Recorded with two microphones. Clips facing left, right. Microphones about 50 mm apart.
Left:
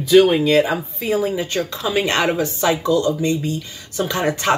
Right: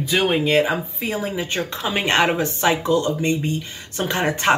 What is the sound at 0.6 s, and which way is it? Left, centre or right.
Speech, centre.